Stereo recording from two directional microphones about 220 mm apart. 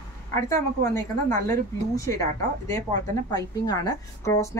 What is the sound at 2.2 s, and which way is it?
A woman's voice, 15° left (ahead or behind).